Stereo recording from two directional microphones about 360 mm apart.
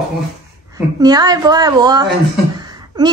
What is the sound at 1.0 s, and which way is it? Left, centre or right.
Speech, centre.